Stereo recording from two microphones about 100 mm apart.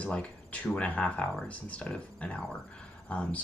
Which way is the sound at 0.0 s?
15° left (ahead or behind).